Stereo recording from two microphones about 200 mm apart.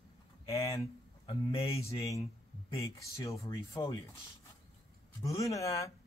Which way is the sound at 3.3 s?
25° left (ahead or behind).